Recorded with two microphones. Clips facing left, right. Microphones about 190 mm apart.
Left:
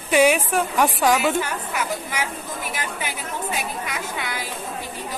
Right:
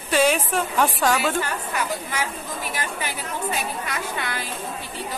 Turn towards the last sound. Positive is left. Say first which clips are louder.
# even
turn(degrees=10)  # may be behind; listen again after turning